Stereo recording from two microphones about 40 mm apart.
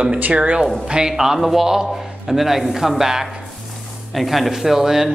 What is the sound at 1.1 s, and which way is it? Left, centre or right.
Speech, centre.